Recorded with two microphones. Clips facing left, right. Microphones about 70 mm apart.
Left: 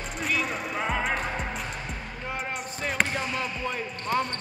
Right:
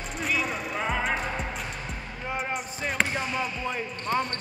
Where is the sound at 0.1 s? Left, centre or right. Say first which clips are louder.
Even; centre.